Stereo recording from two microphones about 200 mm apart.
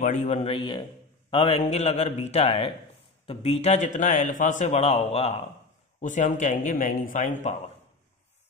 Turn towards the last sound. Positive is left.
turn(degrees=40)  # may be behind; listen again after turning